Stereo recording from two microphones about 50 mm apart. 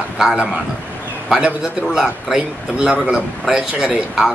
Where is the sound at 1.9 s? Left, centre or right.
Centre.